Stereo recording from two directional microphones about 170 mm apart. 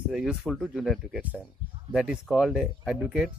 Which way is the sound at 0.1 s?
Centre (ahead or behind).